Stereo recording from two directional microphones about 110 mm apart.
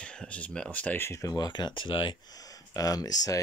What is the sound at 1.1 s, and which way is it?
Speech, 30° left (ahead or behind).